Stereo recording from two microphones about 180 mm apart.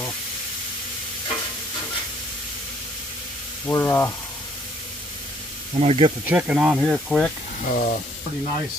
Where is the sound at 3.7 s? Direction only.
15° left (ahead or behind).